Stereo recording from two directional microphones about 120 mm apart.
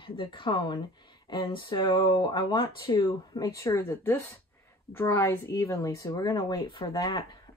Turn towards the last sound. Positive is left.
turn(degrees=30)  # may be behind; listen again after turning